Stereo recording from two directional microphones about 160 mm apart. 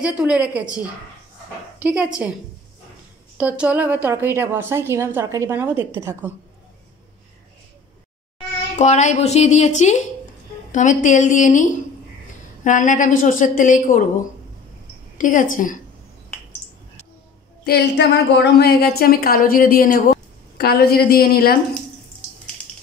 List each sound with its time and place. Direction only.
0.0 s a woman's voice: 5° right (ahead or behind)
1.8 s a woman's voice: 5° right (ahead or behind)
3.3 s a woman's voice: 10° right (ahead or behind)
8.7 s a woman's voice: 45° left (ahead or behind)
15.1 s a woman's voice: 55° left (ahead or behind)
17.6 s a woman's voice: 90° left; by 21.5 s 70° left (ahead or behind)